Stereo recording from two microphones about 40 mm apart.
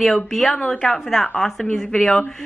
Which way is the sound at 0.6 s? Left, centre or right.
Left.